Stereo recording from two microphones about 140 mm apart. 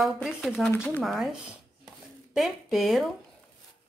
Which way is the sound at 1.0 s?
Centre (ahead or behind).